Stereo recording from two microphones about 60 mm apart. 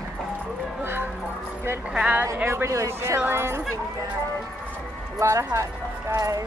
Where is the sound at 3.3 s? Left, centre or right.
Right.